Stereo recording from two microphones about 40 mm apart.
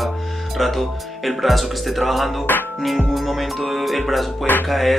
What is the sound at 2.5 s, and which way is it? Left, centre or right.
Music, left.